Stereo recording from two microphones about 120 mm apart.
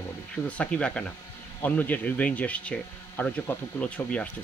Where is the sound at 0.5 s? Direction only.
10° left (ahead or behind).